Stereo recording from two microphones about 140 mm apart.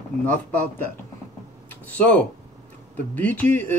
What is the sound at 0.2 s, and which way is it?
Speech, 10° left (ahead or behind).